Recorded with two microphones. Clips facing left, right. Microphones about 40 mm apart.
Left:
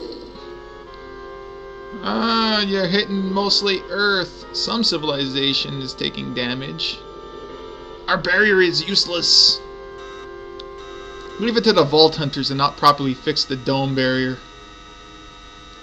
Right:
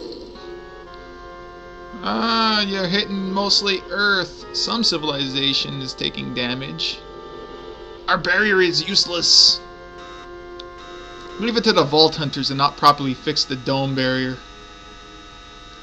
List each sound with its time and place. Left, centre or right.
2.0 s speech: centre
8.1 s speech: centre
11.3 s speech: centre